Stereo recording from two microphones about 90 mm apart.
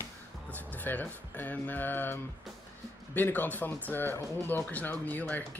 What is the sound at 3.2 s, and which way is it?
Speech, 20° left (ahead or behind).